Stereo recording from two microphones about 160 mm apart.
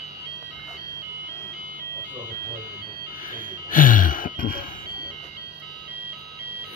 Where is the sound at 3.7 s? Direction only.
55° left (ahead or behind).